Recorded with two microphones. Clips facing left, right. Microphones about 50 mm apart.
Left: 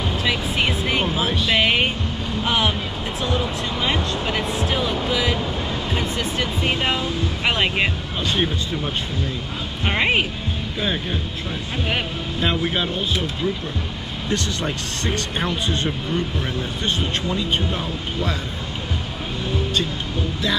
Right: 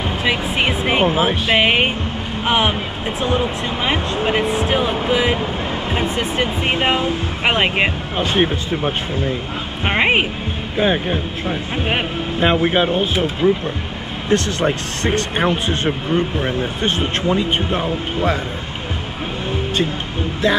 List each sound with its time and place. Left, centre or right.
0.2 s speech: right
14.3 s speech: right
14.7 s speech: right
20.4 s music: right